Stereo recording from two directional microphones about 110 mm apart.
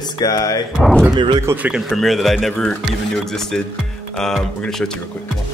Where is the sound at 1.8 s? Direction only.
Centre (ahead or behind).